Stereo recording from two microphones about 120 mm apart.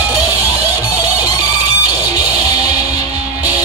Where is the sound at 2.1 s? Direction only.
60° right (ahead or behind).